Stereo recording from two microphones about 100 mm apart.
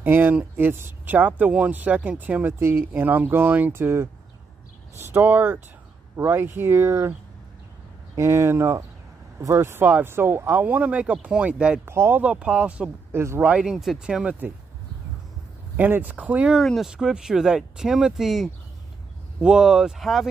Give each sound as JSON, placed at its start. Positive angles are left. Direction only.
{"t": 0.0, "sound": "speech", "side_deg": -15}
{"t": 8.2, "sound": "speech", "side_deg": -30}
{"t": 11.8, "sound": "speech", "side_deg": -25}
{"t": 12.2, "sound": "speech", "side_deg": -10}
{"t": 15.7, "sound": "speech", "side_deg": -15}
{"t": 16.5, "sound": "speech", "side_deg": 0}